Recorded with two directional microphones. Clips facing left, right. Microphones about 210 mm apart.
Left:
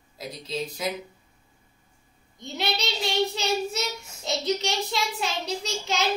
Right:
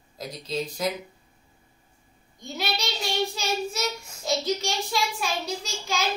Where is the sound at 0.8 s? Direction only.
Centre (ahead or behind).